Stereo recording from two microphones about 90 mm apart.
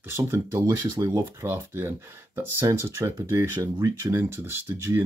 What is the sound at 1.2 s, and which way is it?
Speech, 25° right (ahead or behind).